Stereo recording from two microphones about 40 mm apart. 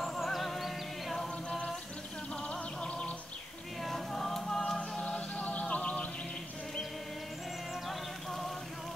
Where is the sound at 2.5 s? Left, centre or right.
Left.